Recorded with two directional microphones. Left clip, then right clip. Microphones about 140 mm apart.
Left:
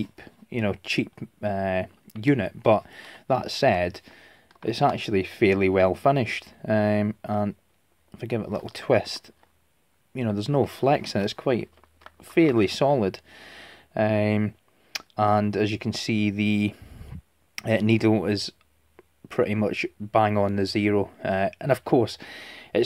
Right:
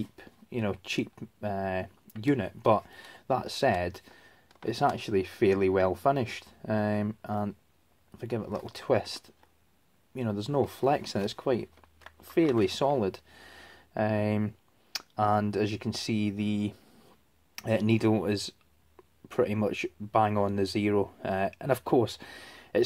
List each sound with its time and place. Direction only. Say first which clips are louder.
0.0 s speech: left 5 dB; 35° left (ahead or behind)